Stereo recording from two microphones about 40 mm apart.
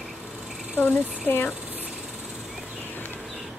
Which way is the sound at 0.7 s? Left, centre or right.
Left.